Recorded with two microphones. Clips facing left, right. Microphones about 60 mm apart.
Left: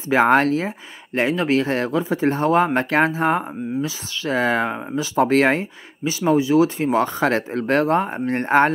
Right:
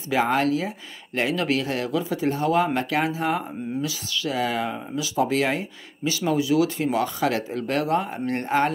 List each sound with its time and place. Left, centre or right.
0.1 s speech: left
6.0 s speech: left